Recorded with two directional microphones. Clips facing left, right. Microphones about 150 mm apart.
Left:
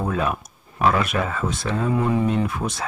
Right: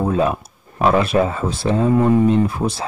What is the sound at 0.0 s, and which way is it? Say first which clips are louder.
Speech: right 6 dB; 30° right (ahead or behind).